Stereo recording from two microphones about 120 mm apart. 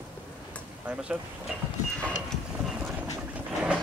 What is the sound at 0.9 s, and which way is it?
Speech, 10° right (ahead or behind).